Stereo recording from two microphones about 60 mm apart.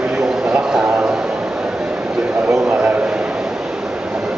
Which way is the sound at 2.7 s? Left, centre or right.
Right.